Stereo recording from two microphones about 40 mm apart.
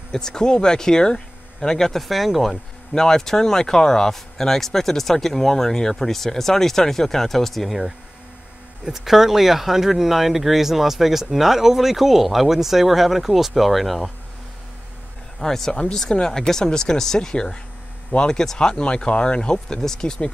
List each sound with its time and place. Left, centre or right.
0.1 s speech: centre
2.9 s speech: centre
8.8 s speech: centre
15.4 s speech: centre
19.5 s speech: centre